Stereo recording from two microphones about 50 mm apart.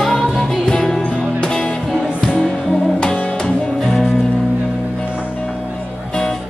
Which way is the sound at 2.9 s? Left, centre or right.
Left.